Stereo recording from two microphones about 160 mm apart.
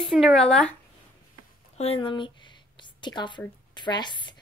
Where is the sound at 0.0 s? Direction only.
Centre (ahead or behind).